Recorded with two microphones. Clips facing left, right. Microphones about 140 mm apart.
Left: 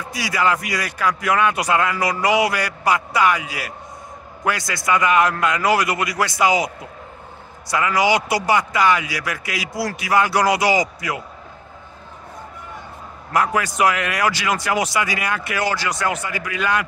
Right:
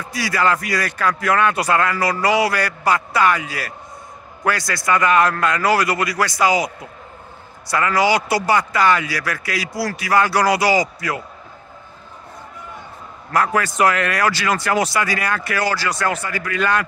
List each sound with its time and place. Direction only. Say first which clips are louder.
0.1 s a man's voice: right 1 dB; 15° left (ahead or behind)
13.3 s speech: right 1 dB; 15° left (ahead or behind)